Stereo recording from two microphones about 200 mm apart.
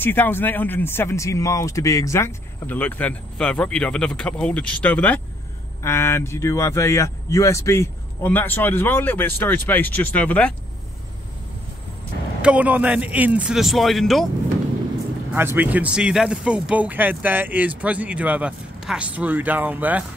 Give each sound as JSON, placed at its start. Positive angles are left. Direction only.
{"t": 0.0, "sound": "speech", "side_deg": 10}
{"t": 12.4, "sound": "a man's voice", "side_deg": -5}
{"t": 15.3, "sound": "speech", "side_deg": -10}